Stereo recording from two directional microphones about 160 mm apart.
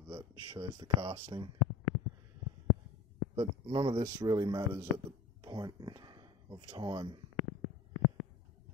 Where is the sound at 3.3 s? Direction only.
30° right (ahead or behind).